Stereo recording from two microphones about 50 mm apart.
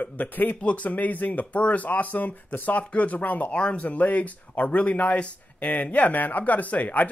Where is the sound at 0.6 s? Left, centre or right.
Left.